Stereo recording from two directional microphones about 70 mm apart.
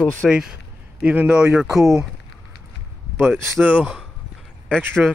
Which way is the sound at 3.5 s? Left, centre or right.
Centre.